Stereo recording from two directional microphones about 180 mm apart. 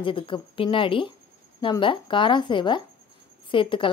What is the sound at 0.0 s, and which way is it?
A woman's voice, 30° left (ahead or behind).